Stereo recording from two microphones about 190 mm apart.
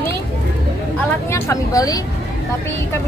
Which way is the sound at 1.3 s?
15° left (ahead or behind).